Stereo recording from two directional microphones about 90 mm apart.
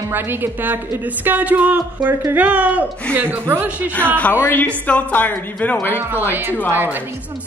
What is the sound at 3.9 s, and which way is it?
A man's voice, 15° left (ahead or behind).